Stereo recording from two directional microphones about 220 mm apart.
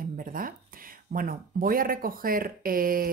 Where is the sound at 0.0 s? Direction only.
40° right (ahead or behind).